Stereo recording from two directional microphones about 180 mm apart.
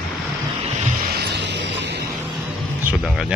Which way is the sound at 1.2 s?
70° right (ahead or behind).